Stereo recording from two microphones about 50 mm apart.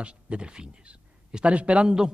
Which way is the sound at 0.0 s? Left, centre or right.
Right.